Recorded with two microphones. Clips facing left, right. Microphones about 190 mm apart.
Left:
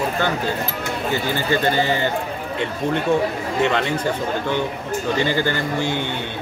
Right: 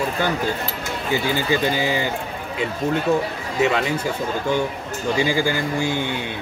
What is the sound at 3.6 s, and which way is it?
Speech, 5° right (ahead or behind).